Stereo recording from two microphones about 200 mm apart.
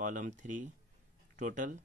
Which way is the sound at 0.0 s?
40° right (ahead or behind).